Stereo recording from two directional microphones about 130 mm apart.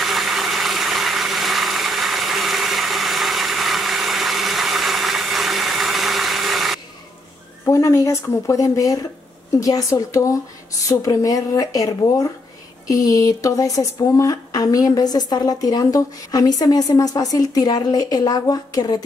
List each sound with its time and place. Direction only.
0.0 s blender: centre (ahead or behind)
7.6 s speech: 25° left (ahead or behind)